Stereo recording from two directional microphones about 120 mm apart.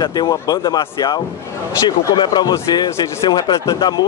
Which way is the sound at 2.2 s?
40° left (ahead or behind).